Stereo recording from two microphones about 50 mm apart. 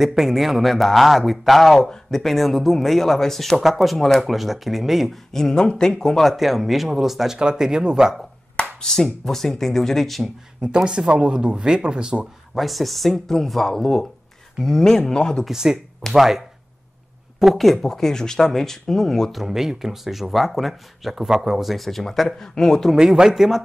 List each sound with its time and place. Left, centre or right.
0.0 s speech: centre
5.3 s speech: centre
7.3 s speech: centre
8.8 s speech: centre
10.6 s speech: centre
12.5 s speech: centre
15.4 s speech: centre
19.3 s speech: centre
22.9 s speech: centre